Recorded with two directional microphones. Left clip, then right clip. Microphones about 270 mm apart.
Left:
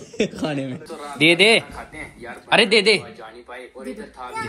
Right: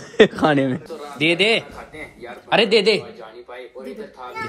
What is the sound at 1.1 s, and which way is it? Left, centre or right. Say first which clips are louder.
A man's voice: left 3 dB; centre.